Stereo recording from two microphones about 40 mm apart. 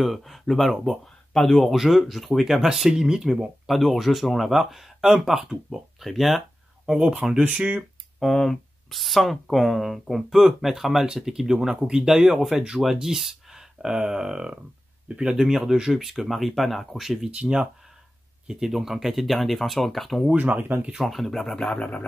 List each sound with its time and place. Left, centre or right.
0.0 s speech: centre
2.6 s speech: centre
3.6 s speech: centre
6.9 s speech: right
8.2 s speech: centre
17.3 s speech: right
18.7 s speech: centre
20.3 s speech: right
20.9 s speech: centre
21.7 s a sound: left